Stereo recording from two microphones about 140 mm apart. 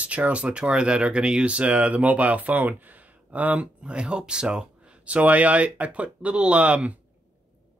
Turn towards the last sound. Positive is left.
turn(degrees=-10)  # may be behind; listen again after turning